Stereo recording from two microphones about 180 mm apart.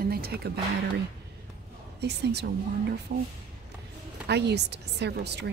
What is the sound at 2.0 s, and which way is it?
A woman's voice, 70° right (ahead or behind).